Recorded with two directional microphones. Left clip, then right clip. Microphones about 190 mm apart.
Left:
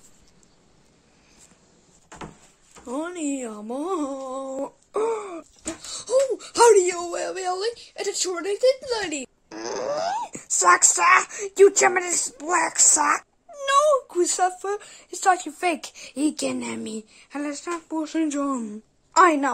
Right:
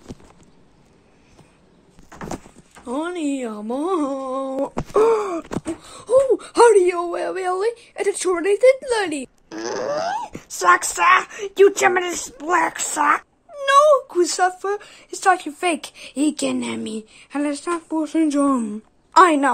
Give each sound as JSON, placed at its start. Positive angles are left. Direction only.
{"t": 2.8, "sound": "speech", "side_deg": 5}
{"t": 6.3, "sound": "a sound", "side_deg": -15}
{"t": 6.7, "sound": "a woman's voice", "side_deg": 0}
{"t": 9.0, "sound": "a sound", "side_deg": 0}
{"t": 10.7, "sound": "speech", "side_deg": 30}
{"t": 11.0, "sound": "speech", "side_deg": 10}